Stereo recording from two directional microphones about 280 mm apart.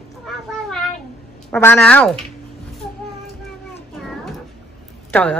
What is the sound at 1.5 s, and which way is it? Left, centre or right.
Speech, centre.